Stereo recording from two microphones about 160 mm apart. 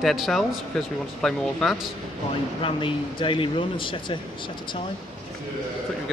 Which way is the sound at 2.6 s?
35° left (ahead or behind).